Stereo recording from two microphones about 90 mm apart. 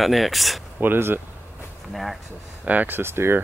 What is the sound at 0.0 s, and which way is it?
Speech, centre (ahead or behind).